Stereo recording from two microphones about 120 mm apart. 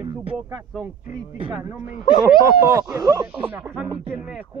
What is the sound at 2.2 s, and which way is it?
Speech, 30° right (ahead or behind).